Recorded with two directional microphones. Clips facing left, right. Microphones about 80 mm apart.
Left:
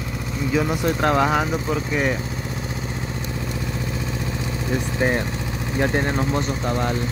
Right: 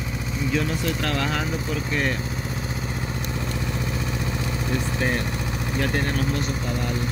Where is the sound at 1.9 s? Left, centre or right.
Centre.